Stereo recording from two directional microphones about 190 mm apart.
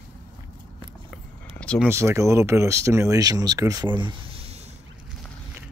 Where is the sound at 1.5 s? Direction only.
5° left (ahead or behind).